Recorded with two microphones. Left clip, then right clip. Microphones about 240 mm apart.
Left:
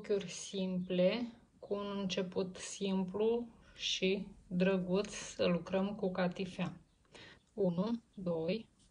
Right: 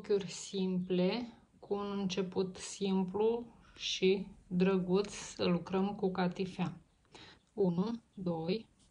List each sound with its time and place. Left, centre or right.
0.0 s speech: centre